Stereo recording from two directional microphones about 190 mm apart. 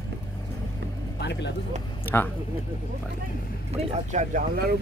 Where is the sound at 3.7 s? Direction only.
40° right (ahead or behind).